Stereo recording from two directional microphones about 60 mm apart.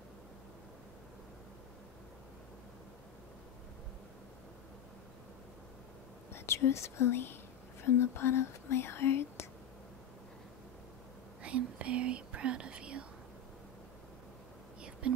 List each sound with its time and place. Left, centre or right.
6.3 s speech: left
11.4 s speech: right
14.8 s whispering: centre